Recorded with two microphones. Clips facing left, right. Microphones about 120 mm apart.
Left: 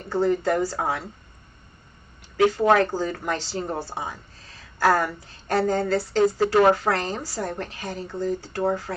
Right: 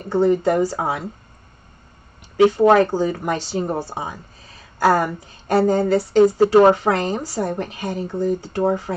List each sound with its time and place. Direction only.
0.0 s speech: 15° right (ahead or behind)
2.3 s speech: 20° right (ahead or behind)